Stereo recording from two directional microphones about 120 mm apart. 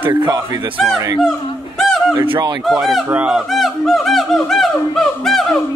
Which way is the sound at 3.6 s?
Centre (ahead or behind).